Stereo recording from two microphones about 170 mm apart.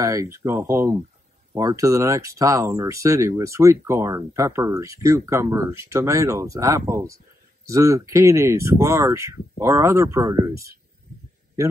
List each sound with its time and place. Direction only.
0.0 s a man's voice: 20° right (ahead or behind)